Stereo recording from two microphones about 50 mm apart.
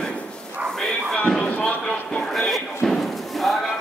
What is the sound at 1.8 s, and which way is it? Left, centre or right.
Clip-clop, centre.